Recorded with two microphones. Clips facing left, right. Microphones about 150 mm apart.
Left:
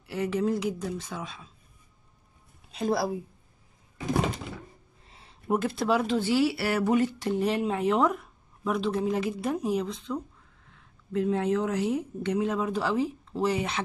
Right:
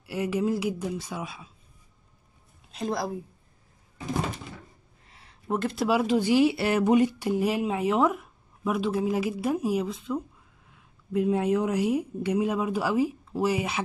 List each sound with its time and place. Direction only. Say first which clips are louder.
0.0 s speech: right 1 dB; 10° right (ahead or behind)
2.7 s a woman's voice: left 3 dB; centre (ahead or behind)
5.0 s a sound: left 1 dB; 25° left (ahead or behind)
5.5 s speech: even; 5° left (ahead or behind)